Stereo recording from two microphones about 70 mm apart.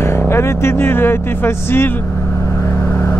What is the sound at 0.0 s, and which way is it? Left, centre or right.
Speech, left.